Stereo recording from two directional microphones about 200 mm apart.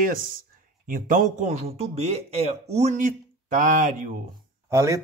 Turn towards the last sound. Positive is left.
turn(degrees=-15)  # may be behind; listen again after turning